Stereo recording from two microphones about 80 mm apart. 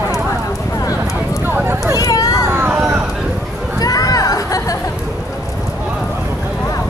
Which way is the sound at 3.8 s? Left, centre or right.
Left.